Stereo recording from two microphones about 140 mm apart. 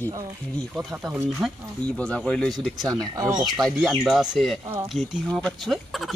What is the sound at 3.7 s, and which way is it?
A man's voice, centre (ahead or behind).